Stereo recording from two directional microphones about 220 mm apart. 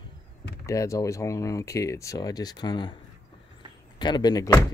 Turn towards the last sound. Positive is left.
turn(degrees=15)  # may be behind; listen again after turning